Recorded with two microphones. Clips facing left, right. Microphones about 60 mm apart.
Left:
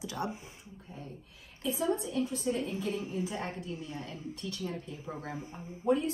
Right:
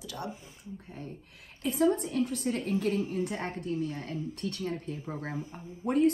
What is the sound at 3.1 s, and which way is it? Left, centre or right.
A woman's voice, right.